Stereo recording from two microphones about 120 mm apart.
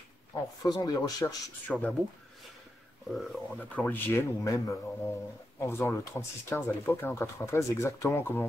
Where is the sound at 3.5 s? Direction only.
10° left (ahead or behind).